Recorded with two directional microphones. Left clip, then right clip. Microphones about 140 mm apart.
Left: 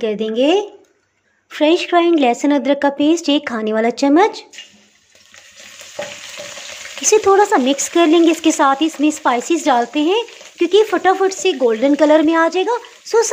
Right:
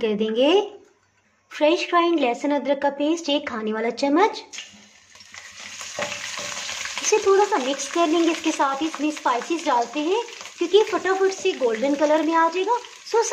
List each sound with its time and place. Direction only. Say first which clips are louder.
0.0 s speech: left 4 dB; 25° left (ahead or behind)
7.1 s speech: left 7 dB; 55° left (ahead or behind)